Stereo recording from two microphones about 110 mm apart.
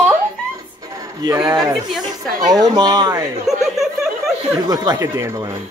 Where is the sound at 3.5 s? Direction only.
Centre (ahead or behind).